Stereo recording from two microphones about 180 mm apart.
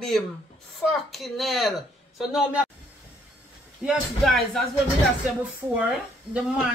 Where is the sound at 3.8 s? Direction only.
Centre (ahead or behind).